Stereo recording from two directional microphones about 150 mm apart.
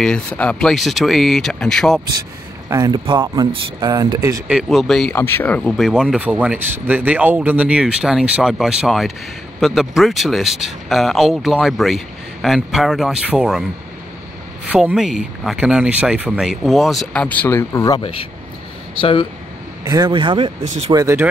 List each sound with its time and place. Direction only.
0.0 s speech: 5° left (ahead or behind)
2.7 s speech: 25° right (ahead or behind)
4.5 s speech: 5° right (ahead or behind)
5.1 s speech: 15° left (ahead or behind); by 13.7 s 5° right (ahead or behind)
14.7 s speech: 5° right (ahead or behind); by 18.0 s 25° left (ahead or behind)
18.9 s speech: 35° left (ahead or behind)
19.9 s speech: 30° right (ahead or behind)
20.9 s speech: 20° right (ahead or behind)